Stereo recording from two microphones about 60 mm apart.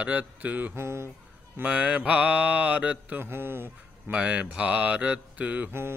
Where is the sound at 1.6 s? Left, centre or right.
Right.